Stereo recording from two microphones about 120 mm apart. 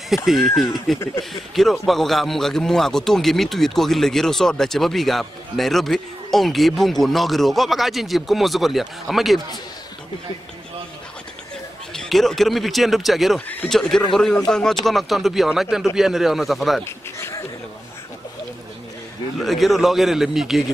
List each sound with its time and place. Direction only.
0.1 s speech: centre (ahead or behind)
11.9 s speech: 5° left (ahead or behind)
16.8 s a sound: 20° left (ahead or behind)
19.4 s speech: centre (ahead or behind)